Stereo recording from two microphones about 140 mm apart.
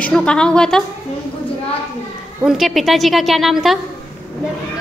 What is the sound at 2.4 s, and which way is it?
A woman's voice, 5° right (ahead or behind).